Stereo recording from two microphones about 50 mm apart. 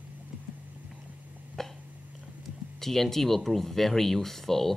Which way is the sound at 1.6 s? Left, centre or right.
Centre.